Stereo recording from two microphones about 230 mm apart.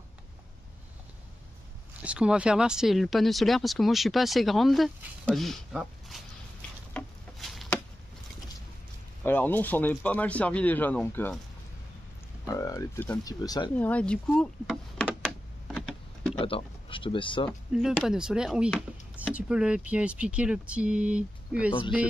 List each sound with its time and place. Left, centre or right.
2.0 s speech: centre
6.9 s a sound: centre
9.2 s speech: centre
12.4 s speech: centre
13.7 s speech: centre
15.2 s computer keyboard: centre
16.3 s speech: left
17.5 s speech: centre